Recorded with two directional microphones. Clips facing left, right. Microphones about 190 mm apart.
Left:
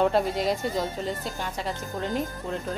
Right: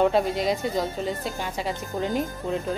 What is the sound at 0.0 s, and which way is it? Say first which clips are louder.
Speech: right 2 dB; centre (ahead or behind).